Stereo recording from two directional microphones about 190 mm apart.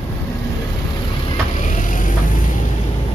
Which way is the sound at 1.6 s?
45° left (ahead or behind).